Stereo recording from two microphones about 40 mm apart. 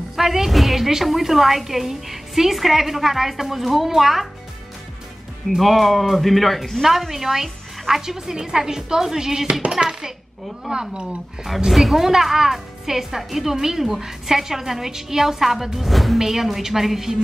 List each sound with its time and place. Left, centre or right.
0.1 s a woman's voice: centre
5.6 s a woman's voice: centre; by 11.1 s right
11.6 s a woman's voice: centre